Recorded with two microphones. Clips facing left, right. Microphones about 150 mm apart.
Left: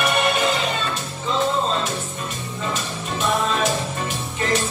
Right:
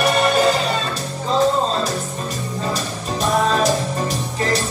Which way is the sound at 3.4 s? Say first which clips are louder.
Right 4 dB; 40° right (ahead or behind).